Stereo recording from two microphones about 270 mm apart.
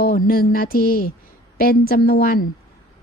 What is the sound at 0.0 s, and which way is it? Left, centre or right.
A woman's voice, left.